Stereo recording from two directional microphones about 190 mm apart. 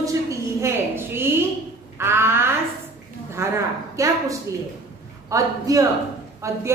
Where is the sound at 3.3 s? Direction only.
15° right (ahead or behind).